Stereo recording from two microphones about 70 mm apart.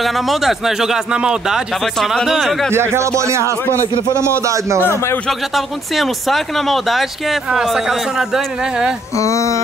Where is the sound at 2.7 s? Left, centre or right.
Right.